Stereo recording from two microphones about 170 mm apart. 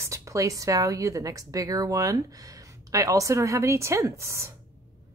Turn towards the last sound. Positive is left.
turn(degrees=-15)  # may be behind; listen again after turning